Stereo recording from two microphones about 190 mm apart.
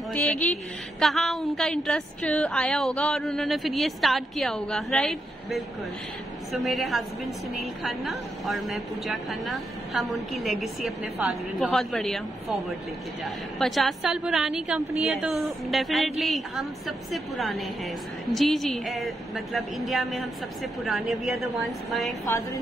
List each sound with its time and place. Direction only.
0.1 s a woman's voice: 5° left (ahead or behind)
22.2 s a woman's voice: 15° left (ahead or behind)